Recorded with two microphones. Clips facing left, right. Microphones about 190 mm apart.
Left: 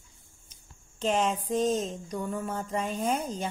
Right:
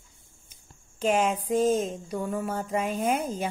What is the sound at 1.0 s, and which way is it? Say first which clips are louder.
Speech: right 3 dB; 10° right (ahead or behind).